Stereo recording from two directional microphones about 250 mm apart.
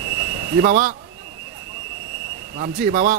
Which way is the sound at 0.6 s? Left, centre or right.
Right.